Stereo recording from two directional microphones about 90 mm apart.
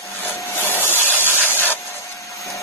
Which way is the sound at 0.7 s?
25° left (ahead or behind).